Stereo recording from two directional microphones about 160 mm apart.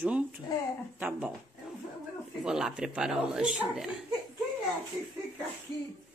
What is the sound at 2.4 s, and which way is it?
A woman's voice, 5° right (ahead or behind).